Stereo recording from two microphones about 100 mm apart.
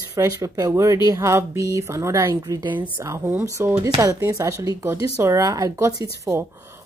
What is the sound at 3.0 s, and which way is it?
Speech, 25° right (ahead or behind).